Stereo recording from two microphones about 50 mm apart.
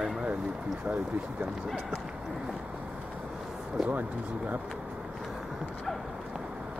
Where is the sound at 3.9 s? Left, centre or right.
Right.